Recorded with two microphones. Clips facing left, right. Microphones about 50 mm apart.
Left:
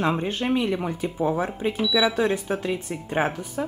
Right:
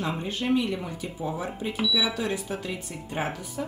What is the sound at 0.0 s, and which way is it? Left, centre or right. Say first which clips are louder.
Speech: left 5 dB; left.